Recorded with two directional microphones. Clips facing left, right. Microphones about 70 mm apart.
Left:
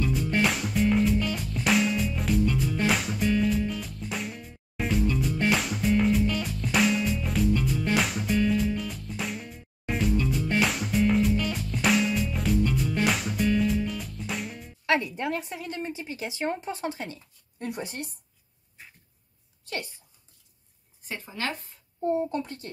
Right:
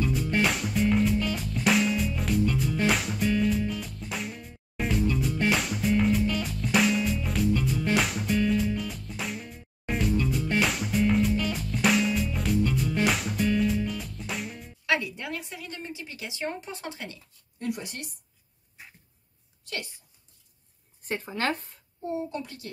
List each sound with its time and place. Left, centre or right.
0.0 s music: centre
14.9 s a woman's voice: left
19.6 s a sound: left
21.0 s speech: right
22.0 s a child's voice: left